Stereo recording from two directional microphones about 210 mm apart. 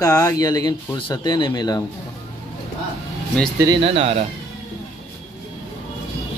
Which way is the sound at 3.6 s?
25° right (ahead or behind).